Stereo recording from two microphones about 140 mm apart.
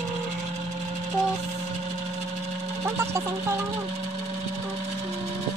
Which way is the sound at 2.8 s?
20° right (ahead or behind).